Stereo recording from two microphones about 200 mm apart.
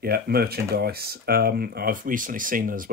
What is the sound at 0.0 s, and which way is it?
Speech, 50° right (ahead or behind).